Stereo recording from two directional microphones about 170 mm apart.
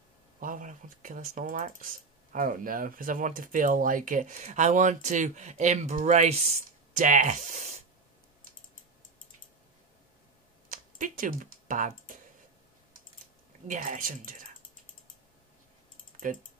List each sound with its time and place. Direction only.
0.4 s speech: 50° right (ahead or behind)
10.7 s computer keyboard: 50° right (ahead or behind)
13.7 s speech: 50° right (ahead or behind)